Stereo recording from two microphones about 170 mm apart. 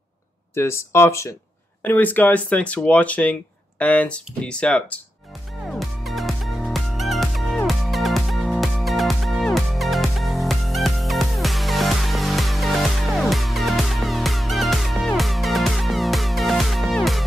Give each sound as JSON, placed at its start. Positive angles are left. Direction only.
{"t": 0.6, "sound": "speech", "side_deg": 15}
{"t": 5.7, "sound": "music", "side_deg": 0}